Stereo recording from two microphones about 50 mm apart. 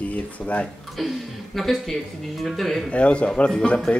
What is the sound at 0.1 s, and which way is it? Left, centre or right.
Speech, left.